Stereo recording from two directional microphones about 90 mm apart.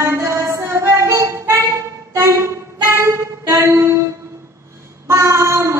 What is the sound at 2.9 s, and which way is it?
Music, 30° right (ahead or behind).